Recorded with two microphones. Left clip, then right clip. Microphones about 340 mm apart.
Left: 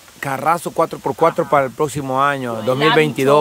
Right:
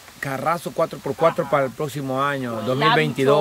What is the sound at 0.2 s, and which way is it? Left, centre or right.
Speech, centre.